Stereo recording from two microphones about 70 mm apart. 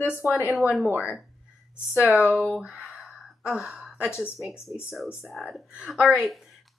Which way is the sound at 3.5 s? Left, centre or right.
Centre.